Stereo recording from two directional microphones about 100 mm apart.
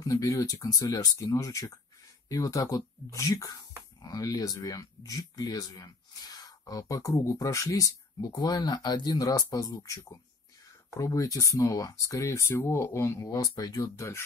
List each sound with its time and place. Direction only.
0.0 s speech: 35° left (ahead or behind)